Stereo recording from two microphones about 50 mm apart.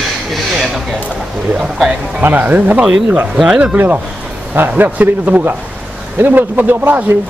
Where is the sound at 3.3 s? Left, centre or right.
Centre.